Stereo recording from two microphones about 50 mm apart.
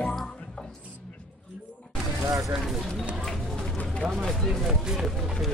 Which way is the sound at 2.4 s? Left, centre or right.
Centre.